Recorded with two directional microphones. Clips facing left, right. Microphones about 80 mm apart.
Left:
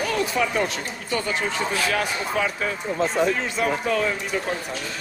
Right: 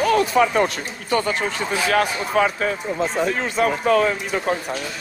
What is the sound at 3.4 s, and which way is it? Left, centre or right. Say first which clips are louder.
Speech: right 3 dB; right.